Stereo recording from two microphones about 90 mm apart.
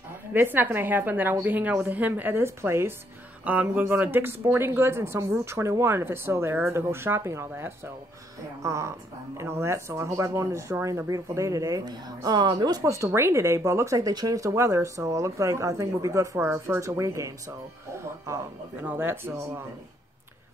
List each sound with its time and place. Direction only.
0.3 s speech: 20° right (ahead or behind)
3.4 s speech: 20° right (ahead or behind)